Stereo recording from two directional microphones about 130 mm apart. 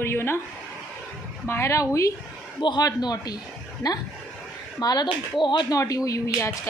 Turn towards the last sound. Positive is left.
turn(degrees=25)  # may be behind; listen again after turning